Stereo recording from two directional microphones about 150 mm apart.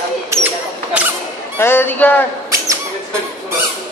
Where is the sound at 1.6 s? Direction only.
15° left (ahead or behind).